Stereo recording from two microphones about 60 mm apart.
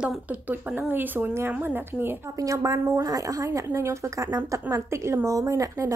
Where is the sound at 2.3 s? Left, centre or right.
Right.